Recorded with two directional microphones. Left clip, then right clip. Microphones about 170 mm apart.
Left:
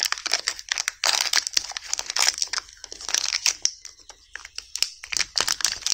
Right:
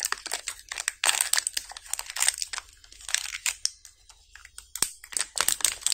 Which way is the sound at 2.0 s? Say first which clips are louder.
Left 6 dB; 25° left (ahead or behind).